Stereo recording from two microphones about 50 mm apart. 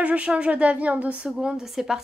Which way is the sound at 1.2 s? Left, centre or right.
Centre.